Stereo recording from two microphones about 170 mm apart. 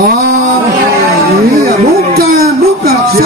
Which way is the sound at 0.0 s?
60° right (ahead or behind).